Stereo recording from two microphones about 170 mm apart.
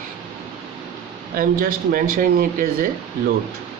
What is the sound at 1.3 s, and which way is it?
Speech, 55° right (ahead or behind).